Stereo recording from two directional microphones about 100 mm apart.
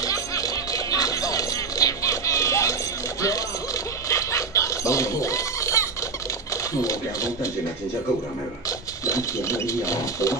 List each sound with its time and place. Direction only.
0.0 s music: 35° left (ahead or behind)
3.2 s snicker: 35° left (ahead or behind)
6.5 s a sound: 35° left (ahead or behind)
8.6 s sewing machine: 35° left (ahead or behind)